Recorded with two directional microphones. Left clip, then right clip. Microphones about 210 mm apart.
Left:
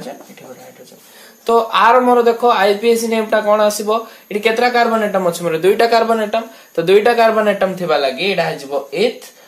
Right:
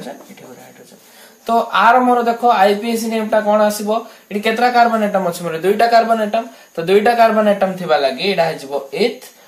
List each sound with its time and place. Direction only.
1.4 s speech: 40° left (ahead or behind)